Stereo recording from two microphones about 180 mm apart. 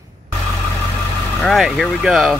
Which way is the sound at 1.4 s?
Centre (ahead or behind).